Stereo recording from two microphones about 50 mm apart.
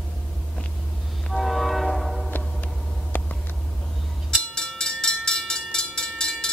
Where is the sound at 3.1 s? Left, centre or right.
Left.